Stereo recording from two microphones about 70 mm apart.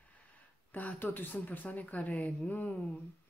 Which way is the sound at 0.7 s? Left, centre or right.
Left.